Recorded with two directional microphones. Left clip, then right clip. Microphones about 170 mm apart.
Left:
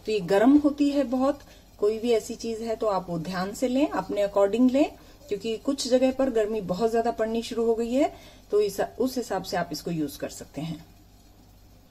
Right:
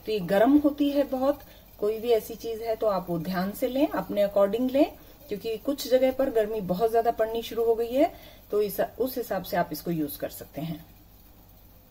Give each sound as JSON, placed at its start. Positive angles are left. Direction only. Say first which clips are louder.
{"t": 0.0, "sound": "speech", "louder": "left 1 dB", "side_deg": 40}
{"t": 5.3, "sound": "speech", "louder": "left 1 dB", "side_deg": 35}